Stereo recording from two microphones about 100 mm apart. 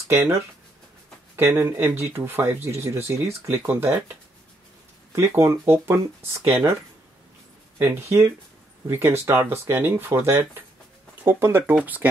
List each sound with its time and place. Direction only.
0.1 s speech: 30° right (ahead or behind)
7.8 s speech: 25° right (ahead or behind)